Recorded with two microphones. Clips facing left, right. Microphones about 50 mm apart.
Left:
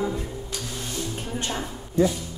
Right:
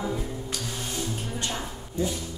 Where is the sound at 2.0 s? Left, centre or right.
Left.